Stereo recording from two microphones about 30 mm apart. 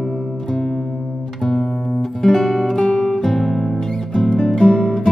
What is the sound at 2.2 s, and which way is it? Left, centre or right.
Music, centre.